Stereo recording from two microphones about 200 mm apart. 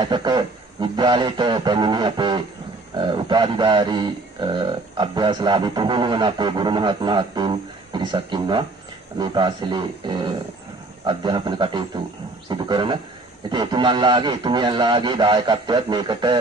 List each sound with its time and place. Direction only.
0.0 s speech: 20° right (ahead or behind)